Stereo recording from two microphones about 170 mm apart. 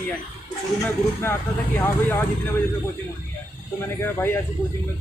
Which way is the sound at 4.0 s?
15° left (ahead or behind).